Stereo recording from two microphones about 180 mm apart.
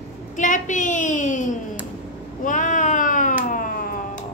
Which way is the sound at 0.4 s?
45° left (ahead or behind).